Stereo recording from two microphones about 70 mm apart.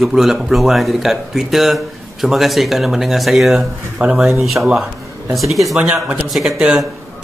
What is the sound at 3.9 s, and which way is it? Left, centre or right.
Speech, centre.